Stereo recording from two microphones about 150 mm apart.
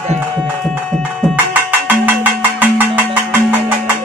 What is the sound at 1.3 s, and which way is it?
Music, 10° right (ahead or behind).